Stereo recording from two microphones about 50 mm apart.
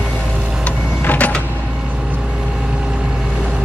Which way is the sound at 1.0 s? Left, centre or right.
Left.